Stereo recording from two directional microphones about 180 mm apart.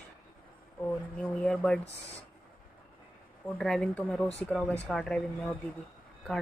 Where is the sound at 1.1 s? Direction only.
10° left (ahead or behind).